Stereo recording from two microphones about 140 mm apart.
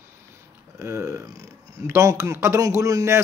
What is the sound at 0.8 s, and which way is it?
Speech, 20° right (ahead or behind).